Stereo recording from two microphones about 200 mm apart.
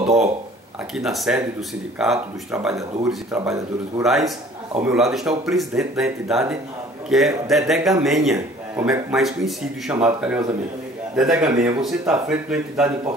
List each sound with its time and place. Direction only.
0.0 s speech: 35° right (ahead or behind)
0.9 s a man's voice: centre (ahead or behind)